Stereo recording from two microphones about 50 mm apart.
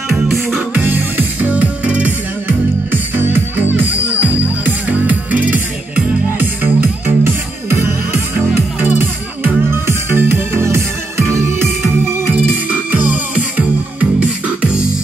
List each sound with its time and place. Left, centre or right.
0.7 s music: right
1.5 s music: right
2.4 s music: right
8.8 s music: right
9.7 s music: right
12.6 s music: right